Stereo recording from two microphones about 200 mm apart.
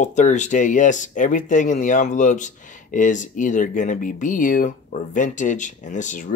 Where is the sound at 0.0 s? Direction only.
35° left (ahead or behind).